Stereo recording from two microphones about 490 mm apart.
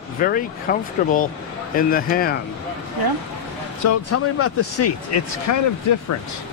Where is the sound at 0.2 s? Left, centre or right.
Centre.